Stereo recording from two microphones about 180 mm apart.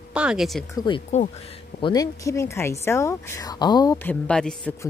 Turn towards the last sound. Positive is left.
turn(degrees=5)  # may be behind; listen again after turning